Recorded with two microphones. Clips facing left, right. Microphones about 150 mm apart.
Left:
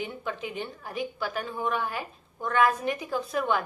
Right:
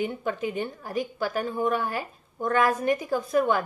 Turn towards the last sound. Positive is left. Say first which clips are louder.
# right 4 dB
turn(degrees=-45)  # may be behind; listen again after turning